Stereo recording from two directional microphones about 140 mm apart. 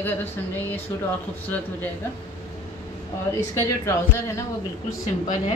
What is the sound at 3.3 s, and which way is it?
Speech, 25° left (ahead or behind).